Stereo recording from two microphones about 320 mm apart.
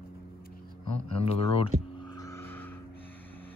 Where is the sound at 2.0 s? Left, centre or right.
Centre.